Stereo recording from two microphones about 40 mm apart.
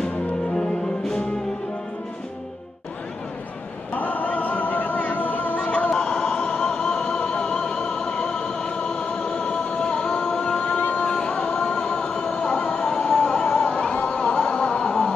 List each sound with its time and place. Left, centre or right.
3.9 s a sound: left
5.0 s music: left
5.7 s music: left
6.7 s music: left
10.3 s music: left
12.4 s train: left
13.2 s music: left
14.1 s a sound: left
14.4 s music: left